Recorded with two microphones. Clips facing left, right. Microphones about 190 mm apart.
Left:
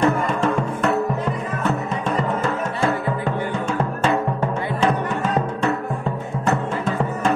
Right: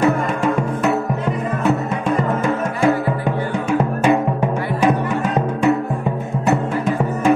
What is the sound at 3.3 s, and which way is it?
Music, 15° right (ahead or behind).